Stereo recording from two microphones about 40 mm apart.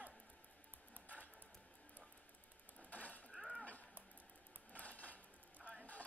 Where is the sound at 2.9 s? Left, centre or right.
Left.